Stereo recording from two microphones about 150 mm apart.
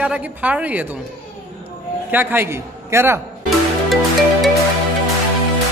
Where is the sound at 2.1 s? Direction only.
15° right (ahead or behind).